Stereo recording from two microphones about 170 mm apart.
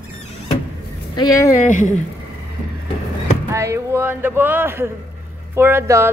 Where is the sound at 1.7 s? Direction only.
45° left (ahead or behind).